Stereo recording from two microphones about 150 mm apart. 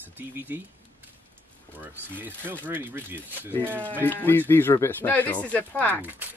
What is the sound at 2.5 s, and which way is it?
Speech, 15° right (ahead or behind).